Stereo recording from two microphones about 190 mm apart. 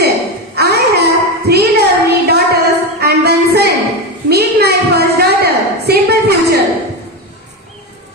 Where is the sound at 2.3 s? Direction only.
60° right (ahead or behind).